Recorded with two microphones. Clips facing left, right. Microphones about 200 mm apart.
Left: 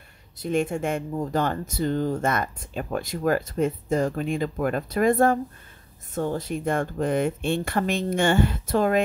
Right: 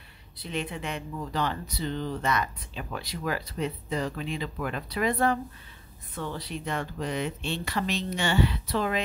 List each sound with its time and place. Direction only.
0.4 s speech: 45° left (ahead or behind)